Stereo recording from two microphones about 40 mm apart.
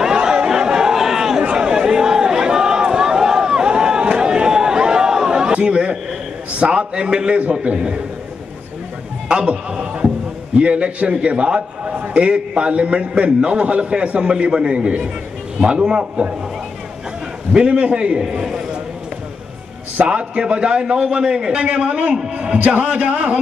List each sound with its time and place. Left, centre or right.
0.0 s a sound: centre
1.4 s a sound: right
5.5 s chatter: right
6.6 s a man's voice: right
9.3 s a man's voice: right
17.5 s a man's voice: right
20.1 s a man's voice: right